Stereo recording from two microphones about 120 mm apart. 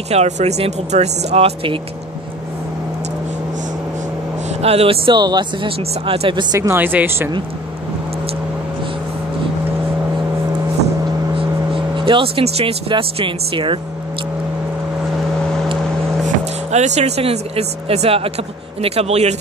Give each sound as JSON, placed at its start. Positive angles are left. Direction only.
{"t": 0.1, "sound": "speech", "side_deg": -65}
{"t": 4.5, "sound": "speech", "side_deg": -60}
{"t": 5.1, "sound": "speech", "side_deg": -35}
{"t": 6.5, "sound": "speech", "side_deg": -30}
{"t": 6.8, "sound": "speech", "side_deg": -15}
{"t": 11.3, "sound": "vehicle", "side_deg": -45}
{"t": 12.9, "sound": "speech", "side_deg": -45}
{"t": 16.7, "sound": "speech", "side_deg": -70}